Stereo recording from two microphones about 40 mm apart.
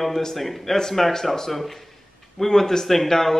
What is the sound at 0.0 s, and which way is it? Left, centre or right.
Speech, centre.